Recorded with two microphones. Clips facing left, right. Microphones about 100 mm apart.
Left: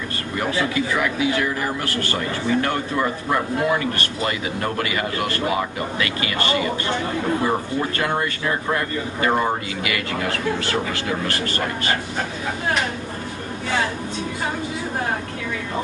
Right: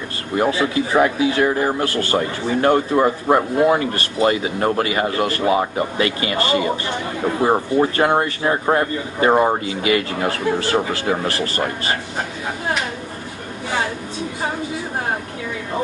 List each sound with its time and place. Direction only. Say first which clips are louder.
0.4 s a man's voice: right 4 dB; 25° right (ahead or behind)